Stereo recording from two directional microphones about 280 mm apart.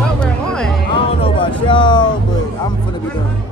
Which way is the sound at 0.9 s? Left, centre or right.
Centre.